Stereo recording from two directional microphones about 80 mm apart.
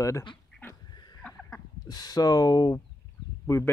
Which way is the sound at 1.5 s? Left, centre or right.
Left.